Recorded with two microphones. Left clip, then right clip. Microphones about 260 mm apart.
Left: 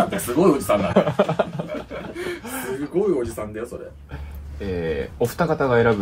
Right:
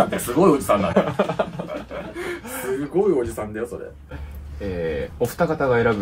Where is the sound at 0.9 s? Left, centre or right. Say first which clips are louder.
Left 2 dB; left.